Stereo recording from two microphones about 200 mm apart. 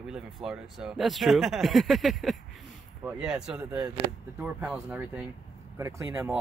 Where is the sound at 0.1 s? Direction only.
Centre (ahead or behind).